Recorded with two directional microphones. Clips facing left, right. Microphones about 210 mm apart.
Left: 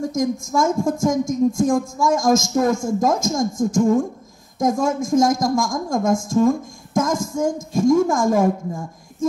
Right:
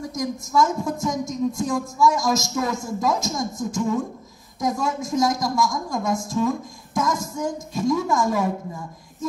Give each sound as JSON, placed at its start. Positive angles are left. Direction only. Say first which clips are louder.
{"t": 0.0, "sound": "a woman's voice", "louder": "left 6 dB", "side_deg": 45}